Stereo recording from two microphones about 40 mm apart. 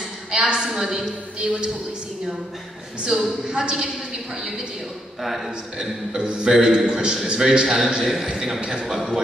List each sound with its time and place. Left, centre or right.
0.3 s a woman's voice: right
0.7 s a woman's voice: centre
1.4 s a man's voice: right
3.1 s a woman's voice: centre
5.2 s a man's voice: centre
6.1 s a man's voice: right
7.3 s a woman's voice: centre